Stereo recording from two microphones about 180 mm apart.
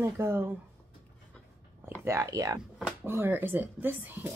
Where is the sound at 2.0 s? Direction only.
15° right (ahead or behind).